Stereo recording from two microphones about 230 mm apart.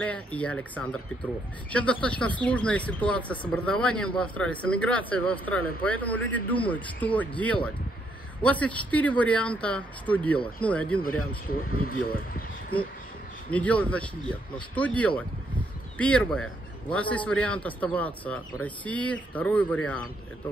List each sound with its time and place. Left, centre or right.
0.0 s speech: centre
12.1 s a sound: left
13.5 s speech: centre